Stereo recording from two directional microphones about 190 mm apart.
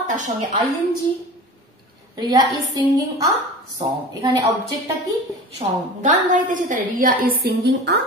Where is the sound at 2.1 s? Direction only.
20° right (ahead or behind).